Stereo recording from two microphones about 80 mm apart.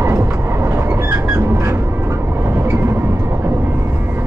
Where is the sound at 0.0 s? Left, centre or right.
Right.